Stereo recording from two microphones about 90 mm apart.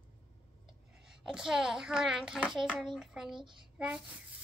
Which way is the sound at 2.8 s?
5° right (ahead or behind).